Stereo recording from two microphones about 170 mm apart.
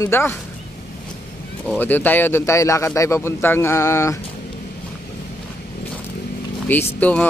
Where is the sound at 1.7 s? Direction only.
10° left (ahead or behind).